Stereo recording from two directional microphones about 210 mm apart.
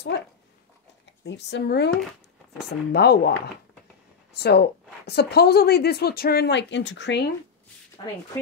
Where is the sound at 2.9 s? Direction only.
50° left (ahead or behind).